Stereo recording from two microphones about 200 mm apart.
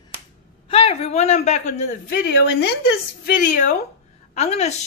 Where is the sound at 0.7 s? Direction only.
30° left (ahead or behind).